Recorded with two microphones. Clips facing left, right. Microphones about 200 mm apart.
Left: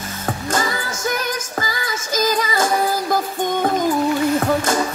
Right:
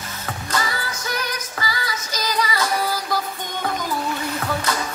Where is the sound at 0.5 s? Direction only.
50° left (ahead or behind).